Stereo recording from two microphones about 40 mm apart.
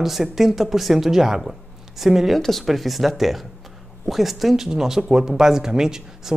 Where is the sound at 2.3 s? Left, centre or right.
Centre.